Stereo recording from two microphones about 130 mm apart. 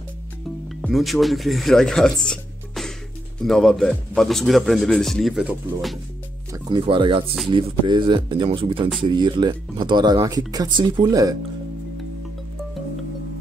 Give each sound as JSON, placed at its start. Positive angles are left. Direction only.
{"t": 0.7, "sound": "a man's voice", "side_deg": 0}
{"t": 6.5, "sound": "speech", "side_deg": -40}